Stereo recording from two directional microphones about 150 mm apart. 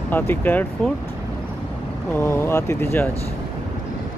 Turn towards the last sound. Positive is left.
turn(degrees=15)  # may be behind; listen again after turning